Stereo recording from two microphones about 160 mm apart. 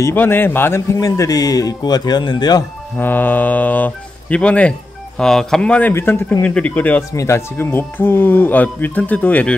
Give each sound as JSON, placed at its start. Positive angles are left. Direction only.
{"t": 0.0, "sound": "speech", "side_deg": 15}
{"t": 3.0, "sound": "speech", "side_deg": 10}